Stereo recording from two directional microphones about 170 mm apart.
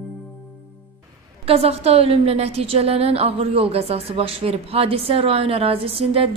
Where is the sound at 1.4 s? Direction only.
35° right (ahead or behind).